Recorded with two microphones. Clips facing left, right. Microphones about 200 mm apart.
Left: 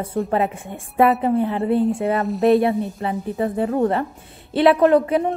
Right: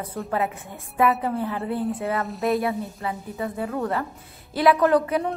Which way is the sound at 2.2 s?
Centre (ahead or behind).